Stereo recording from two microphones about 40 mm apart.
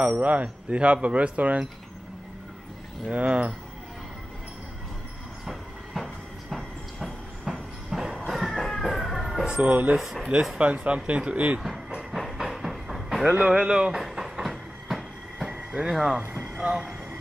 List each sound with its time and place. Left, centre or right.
0.1 s speech: right
3.1 s speech: right
5.4 s train: centre
7.9 s a sound: centre
8.3 s vehicle: centre
9.5 s speech: right
12.2 s train: centre
13.3 s speech: right
13.9 s train: centre
15.4 s a sound: right
15.9 s speech: centre
16.5 s speech: right